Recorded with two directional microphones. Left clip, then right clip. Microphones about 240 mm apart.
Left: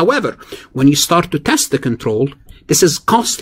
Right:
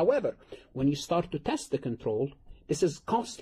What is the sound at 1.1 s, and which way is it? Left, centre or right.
Speech, left.